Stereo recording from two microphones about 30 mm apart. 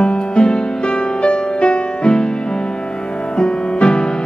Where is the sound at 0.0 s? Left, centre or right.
Left.